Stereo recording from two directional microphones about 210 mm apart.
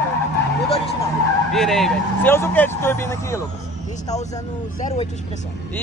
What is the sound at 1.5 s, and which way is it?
Speech, centre (ahead or behind).